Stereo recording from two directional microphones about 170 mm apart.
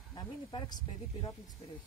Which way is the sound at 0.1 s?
25° left (ahead or behind).